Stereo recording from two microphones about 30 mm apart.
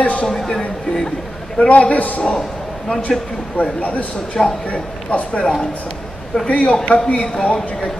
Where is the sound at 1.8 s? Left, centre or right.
Left.